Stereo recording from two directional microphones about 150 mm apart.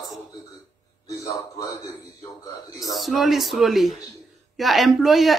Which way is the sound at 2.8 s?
Centre (ahead or behind).